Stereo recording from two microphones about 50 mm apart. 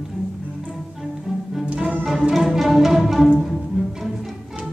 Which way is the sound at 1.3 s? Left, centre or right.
Centre.